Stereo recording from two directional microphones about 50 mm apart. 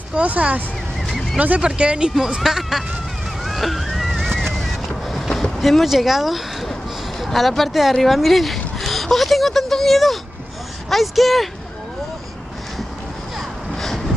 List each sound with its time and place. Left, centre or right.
0.1 s speech: right
1.0 s a sound: centre
1.6 s speech: centre
3.4 s boat: centre
10.9 s speech: centre
13.4 s vehicle: centre